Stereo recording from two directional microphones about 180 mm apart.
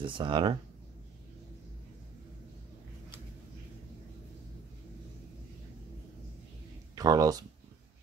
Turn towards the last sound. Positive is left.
turn(degrees=-20)  # may be behind; listen again after turning